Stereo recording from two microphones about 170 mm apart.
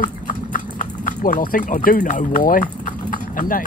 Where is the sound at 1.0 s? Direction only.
55° left (ahead or behind).